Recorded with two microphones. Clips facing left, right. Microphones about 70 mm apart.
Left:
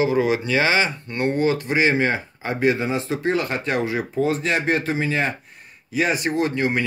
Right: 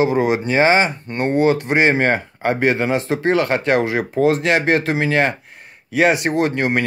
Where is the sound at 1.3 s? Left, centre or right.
Right.